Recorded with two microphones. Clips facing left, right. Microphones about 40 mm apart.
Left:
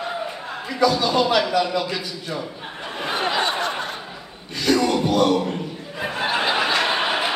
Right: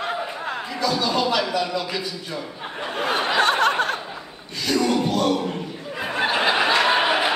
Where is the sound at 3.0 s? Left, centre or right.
Right.